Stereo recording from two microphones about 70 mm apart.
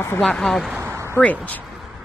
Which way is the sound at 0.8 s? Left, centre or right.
Right.